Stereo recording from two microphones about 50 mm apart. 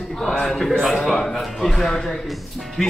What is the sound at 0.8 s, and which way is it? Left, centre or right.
Speech, centre.